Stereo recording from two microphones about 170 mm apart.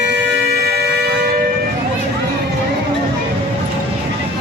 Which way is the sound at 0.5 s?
70° right (ahead or behind).